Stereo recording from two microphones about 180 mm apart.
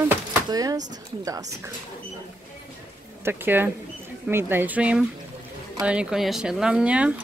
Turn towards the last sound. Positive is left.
turn(degrees=-5)  # may be behind; listen again after turning